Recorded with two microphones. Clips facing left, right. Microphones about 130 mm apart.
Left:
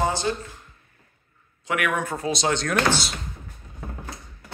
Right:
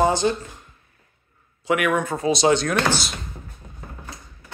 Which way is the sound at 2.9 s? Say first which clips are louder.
Even; 30° left (ahead or behind).